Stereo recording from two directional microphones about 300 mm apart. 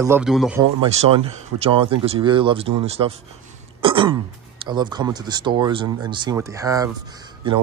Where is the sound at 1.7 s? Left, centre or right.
Right.